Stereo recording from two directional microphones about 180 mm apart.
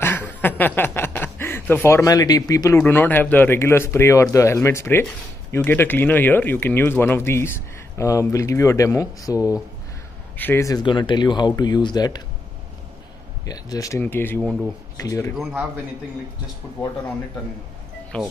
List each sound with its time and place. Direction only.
0.0 s a sound: 10° left (ahead or behind)
2.8 s speech: 10° left (ahead or behind)
13.5 s speech: 20° left (ahead or behind)
15.3 s a man's voice: centre (ahead or behind)